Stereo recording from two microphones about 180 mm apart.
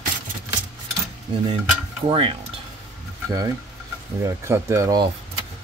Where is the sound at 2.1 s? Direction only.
30° right (ahead or behind).